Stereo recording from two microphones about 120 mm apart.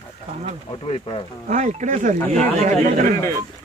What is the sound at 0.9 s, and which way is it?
Speech, 55° left (ahead or behind).